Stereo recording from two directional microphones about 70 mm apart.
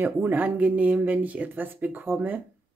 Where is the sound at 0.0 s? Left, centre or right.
Right.